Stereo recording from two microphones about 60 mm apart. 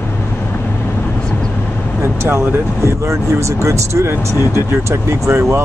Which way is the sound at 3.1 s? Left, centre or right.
Right.